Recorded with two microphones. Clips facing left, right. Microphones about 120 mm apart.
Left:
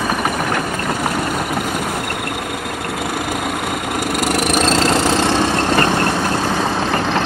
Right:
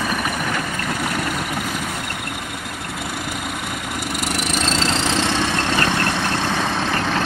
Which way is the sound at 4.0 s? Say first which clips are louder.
Left 7 dB; 75° left (ahead or behind).